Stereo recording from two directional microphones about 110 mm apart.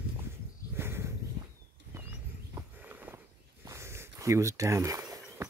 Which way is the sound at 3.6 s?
25° right (ahead or behind).